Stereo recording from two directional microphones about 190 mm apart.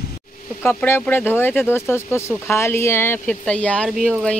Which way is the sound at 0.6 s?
10° left (ahead or behind).